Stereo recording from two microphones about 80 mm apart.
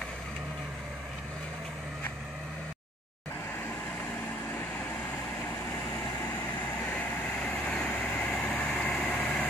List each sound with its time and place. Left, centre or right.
7.4 s vehicle: centre